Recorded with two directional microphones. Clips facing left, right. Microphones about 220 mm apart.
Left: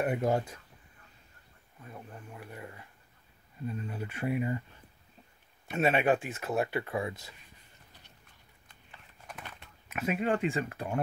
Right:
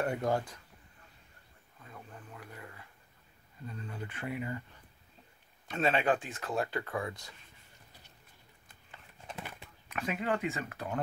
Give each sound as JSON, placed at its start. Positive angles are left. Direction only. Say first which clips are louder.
{"t": 0.0, "sound": "speech", "louder": "left 3 dB", "side_deg": 20}
{"t": 1.9, "sound": "speech", "louder": "left 3 dB", "side_deg": 20}
{"t": 5.8, "sound": "speech", "louder": "left 3 dB", "side_deg": 20}
{"t": 9.8, "sound": "speech", "louder": "left 4 dB", "side_deg": 25}